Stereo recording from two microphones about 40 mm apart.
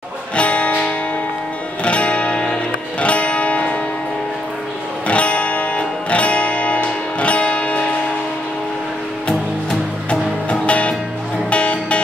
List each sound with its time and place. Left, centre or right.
0.4 s music: left
5.0 s music: left
10.0 s music: left